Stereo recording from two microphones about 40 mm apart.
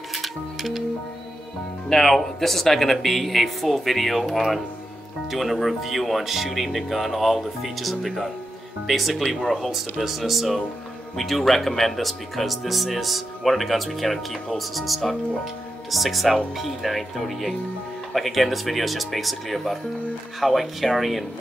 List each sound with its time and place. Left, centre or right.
0.1 s music: centre
1.9 s speech: centre